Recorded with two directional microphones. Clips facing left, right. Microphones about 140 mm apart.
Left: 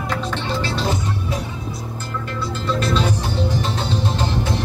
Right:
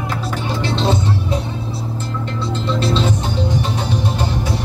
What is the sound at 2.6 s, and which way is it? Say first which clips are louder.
Music: right 1 dB; 30° right (ahead or behind).